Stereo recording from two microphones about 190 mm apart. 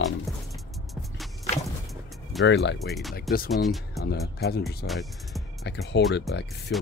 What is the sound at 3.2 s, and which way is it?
Speech, 55° left (ahead or behind).